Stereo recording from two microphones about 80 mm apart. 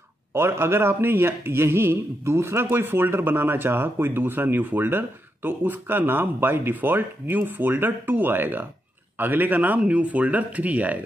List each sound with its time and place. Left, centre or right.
0.3 s a man's voice: right